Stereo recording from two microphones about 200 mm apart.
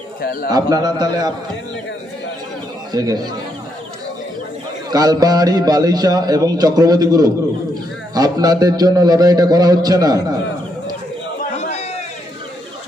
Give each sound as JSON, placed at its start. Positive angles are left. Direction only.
{"t": 0.2, "sound": "a man's voice", "side_deg": 50}
{"t": 0.5, "sound": "a man's voice", "side_deg": -20}
{"t": 2.9, "sound": "a man's voice", "side_deg": -20}
{"t": 4.9, "sound": "a man's voice", "side_deg": -20}
{"t": 11.5, "sound": "a sound", "side_deg": 30}